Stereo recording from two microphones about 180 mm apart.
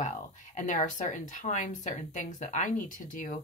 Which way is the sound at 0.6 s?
45° left (ahead or behind).